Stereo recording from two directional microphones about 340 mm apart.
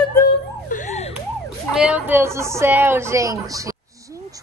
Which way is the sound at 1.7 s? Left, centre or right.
Centre.